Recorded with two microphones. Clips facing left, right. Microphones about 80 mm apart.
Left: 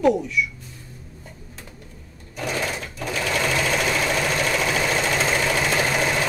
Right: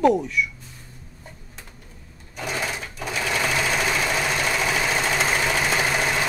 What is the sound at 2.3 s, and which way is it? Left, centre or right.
Sewing machine, centre.